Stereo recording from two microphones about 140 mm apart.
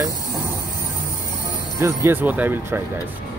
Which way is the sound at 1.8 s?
15° right (ahead or behind).